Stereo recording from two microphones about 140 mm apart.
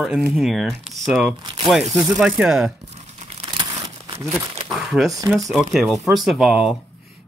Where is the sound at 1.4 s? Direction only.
35° right (ahead or behind).